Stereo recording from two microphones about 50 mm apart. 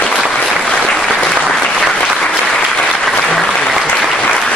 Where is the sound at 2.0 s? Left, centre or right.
Left.